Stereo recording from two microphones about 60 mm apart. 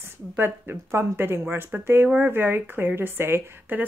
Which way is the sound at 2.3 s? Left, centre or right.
Right.